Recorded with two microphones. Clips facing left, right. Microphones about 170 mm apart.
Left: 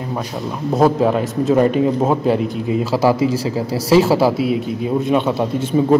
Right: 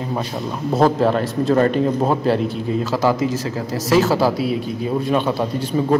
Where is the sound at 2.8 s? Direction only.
30° left (ahead or behind).